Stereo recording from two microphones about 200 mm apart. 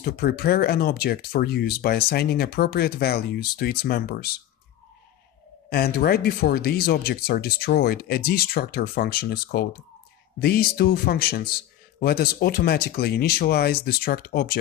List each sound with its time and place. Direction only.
0.0 s speech: 50° left (ahead or behind)
5.7 s speech: 50° left (ahead or behind)